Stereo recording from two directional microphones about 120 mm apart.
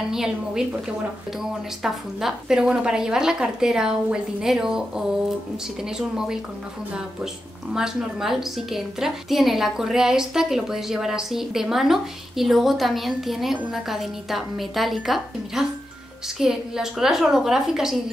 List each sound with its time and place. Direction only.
0.1 s a woman's voice: 5° right (ahead or behind)
7.7 s a woman's voice: 5° right (ahead or behind)